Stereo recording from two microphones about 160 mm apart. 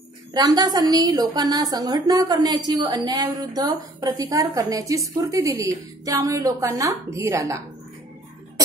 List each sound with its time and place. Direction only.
0.3 s a woman's voice: 25° right (ahead or behind)